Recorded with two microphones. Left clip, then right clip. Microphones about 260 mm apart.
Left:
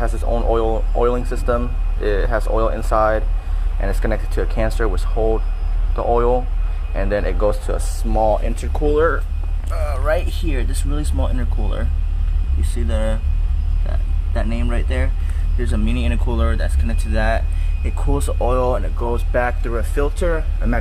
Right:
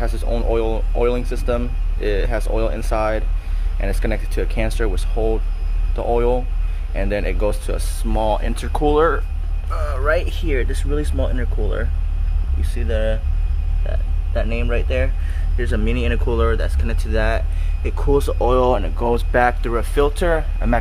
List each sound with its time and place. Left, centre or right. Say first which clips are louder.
0.1 s a sound: left 2 dB; centre
1.3 s speech: left 2 dB; centre
9.7 s speech: right 1 dB; centre
14.3 s speech: right 3 dB; centre